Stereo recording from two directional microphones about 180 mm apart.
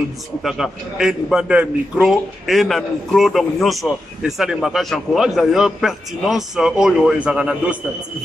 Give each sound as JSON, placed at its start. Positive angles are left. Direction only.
{"t": 0.4, "sound": "a man's voice", "side_deg": 0}